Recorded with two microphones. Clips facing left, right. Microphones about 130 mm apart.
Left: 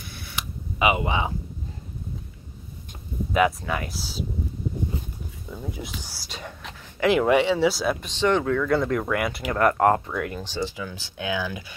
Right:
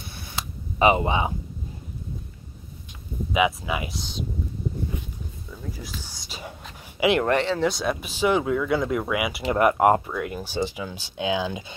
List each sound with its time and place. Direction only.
0.7 s speech: 35° right (ahead or behind)
1.0 s speech: 20° right (ahead or behind)
3.3 s speech: 5° right (ahead or behind)
5.5 s speech: 25° left (ahead or behind)
5.9 s speech: 5° left (ahead or behind); by 11.6 s 20° right (ahead or behind)